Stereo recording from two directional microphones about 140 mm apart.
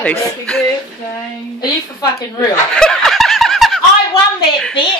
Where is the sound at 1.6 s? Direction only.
25° left (ahead or behind).